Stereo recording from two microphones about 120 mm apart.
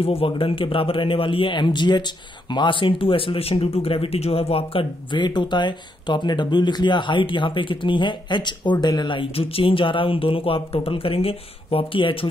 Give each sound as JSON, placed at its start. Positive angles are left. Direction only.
{"t": 0.0, "sound": "a man's voice", "side_deg": 50}